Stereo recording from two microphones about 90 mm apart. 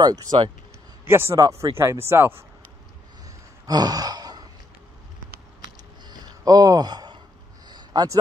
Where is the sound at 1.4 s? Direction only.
40° right (ahead or behind); by 2.5 s 25° right (ahead or behind).